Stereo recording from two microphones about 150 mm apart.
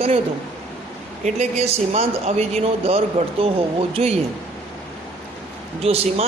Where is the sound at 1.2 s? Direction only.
45° right (ahead or behind).